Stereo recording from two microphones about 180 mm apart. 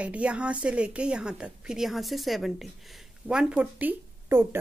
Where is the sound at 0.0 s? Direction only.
5° right (ahead or behind).